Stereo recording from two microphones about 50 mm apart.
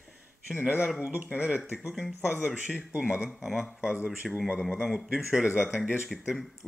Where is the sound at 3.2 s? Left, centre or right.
Centre.